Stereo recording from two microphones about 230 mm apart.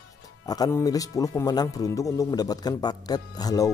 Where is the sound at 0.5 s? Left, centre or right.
Centre.